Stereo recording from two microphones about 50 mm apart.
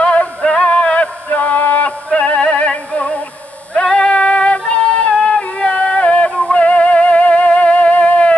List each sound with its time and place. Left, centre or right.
0.0 s music: left
3.8 s synthetic singing: left
5.1 s music: centre